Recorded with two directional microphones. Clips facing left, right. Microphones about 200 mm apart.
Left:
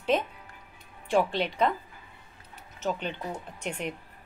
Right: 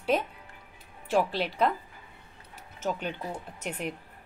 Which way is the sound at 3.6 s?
5° right (ahead or behind).